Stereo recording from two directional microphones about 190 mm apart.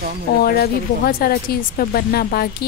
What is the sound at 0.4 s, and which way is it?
Speech, 55° left (ahead or behind).